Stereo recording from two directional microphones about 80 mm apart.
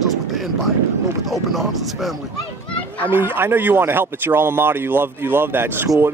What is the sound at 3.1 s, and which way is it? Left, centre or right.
A man's voice, right.